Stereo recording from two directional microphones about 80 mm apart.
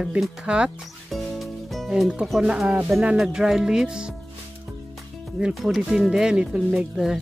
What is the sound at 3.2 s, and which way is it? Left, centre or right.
Speech, centre.